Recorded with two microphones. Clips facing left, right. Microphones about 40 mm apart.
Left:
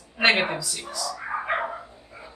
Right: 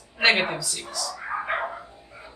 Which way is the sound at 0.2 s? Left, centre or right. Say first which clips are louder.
Even; centre.